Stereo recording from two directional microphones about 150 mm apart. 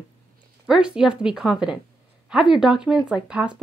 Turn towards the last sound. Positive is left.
turn(degrees=-5)  # may be behind; listen again after turning